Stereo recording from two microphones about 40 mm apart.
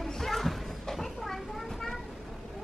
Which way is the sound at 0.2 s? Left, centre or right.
Centre.